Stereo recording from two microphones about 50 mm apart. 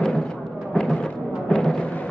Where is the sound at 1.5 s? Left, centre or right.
Centre.